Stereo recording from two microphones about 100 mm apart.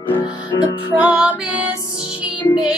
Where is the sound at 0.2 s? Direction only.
50° left (ahead or behind).